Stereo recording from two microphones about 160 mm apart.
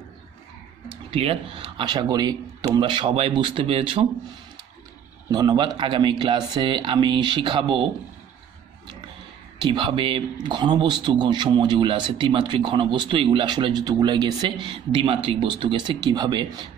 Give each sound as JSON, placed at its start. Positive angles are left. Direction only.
{"t": 0.8, "sound": "speech", "side_deg": -35}
{"t": 5.3, "sound": "speech", "side_deg": -25}
{"t": 9.6, "sound": "speech", "side_deg": -30}